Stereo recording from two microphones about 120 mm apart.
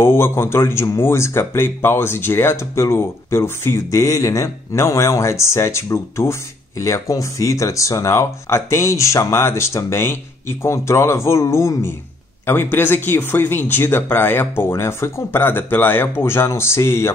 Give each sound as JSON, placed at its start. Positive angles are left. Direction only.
{"t": 0.0, "sound": "speech", "side_deg": 20}